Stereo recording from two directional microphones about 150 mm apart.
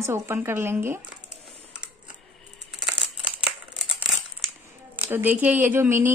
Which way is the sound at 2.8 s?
5° right (ahead or behind).